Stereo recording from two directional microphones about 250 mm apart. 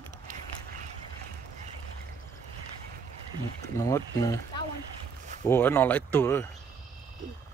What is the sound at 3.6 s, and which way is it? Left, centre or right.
Speech, centre.